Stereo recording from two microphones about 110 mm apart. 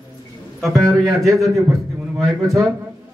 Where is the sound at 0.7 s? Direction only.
30° right (ahead or behind).